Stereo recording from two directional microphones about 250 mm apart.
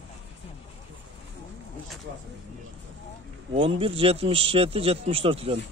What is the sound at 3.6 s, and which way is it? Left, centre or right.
Speech, right.